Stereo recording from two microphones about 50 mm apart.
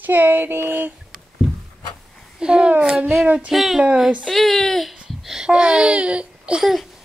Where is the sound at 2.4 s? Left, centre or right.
Centre.